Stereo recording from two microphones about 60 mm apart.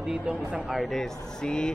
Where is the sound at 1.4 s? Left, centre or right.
Centre.